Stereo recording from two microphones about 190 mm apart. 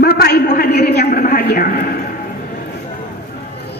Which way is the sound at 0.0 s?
55° left (ahead or behind).